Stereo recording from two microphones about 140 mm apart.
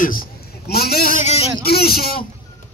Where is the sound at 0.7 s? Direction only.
90° left.